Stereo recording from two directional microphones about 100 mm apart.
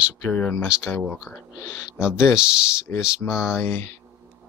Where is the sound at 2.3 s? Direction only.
10° right (ahead or behind).